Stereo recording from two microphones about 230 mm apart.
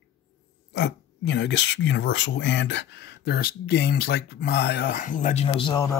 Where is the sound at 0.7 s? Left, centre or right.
Left.